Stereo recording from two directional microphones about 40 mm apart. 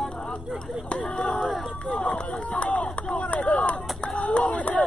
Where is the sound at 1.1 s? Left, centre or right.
Centre.